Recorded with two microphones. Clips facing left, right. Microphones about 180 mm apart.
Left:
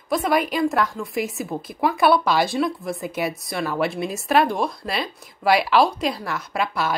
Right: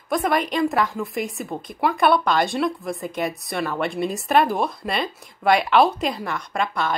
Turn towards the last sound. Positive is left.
turn(degrees=5)  # may be behind; listen again after turning